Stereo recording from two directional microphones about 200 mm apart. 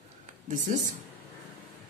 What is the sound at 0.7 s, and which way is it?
Speech, 40° right (ahead or behind).